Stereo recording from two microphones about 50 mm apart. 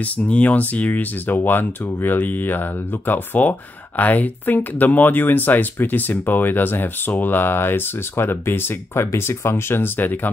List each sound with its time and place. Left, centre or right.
0.0 s speech: left
1.2 s speech: left